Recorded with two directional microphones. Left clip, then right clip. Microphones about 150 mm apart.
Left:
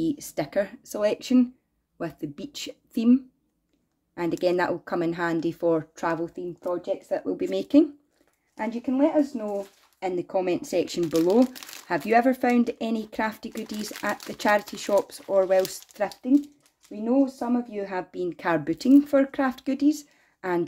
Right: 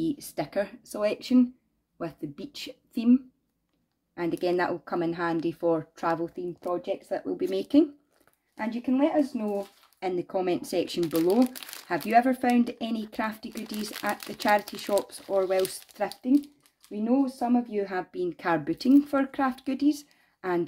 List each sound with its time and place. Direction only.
0.0 s a woman's voice: 30° left (ahead or behind)
8.5 s speech: 20° left (ahead or behind)
9.9 s a woman's voice: 15° left (ahead or behind)
16.9 s speech: 10° left (ahead or behind)